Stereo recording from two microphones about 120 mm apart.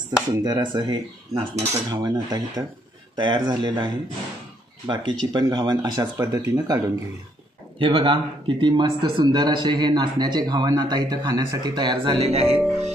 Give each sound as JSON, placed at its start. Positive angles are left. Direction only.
{"t": 0.3, "sound": "a man's voice", "side_deg": -35}
{"t": 1.5, "sound": "cutlery", "side_deg": -65}
{"t": 1.9, "sound": "a man's voice", "side_deg": -30}
{"t": 7.8, "sound": "a man's voice", "side_deg": -50}